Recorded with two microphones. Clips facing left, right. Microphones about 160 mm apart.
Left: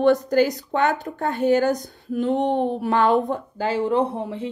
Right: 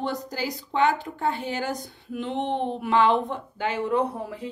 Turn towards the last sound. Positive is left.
turn(degrees=25)  # may be behind; listen again after turning